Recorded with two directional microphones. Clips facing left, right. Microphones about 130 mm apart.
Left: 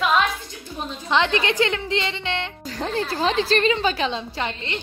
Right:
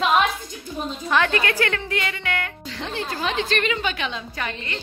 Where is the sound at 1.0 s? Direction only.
20° left (ahead or behind).